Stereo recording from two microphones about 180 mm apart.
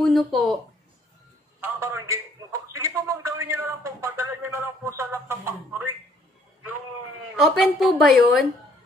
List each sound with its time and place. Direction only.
0.0 s speech: centre (ahead or behind)
1.6 s a man's voice: 15° right (ahead or behind)
7.3 s speech: centre (ahead or behind)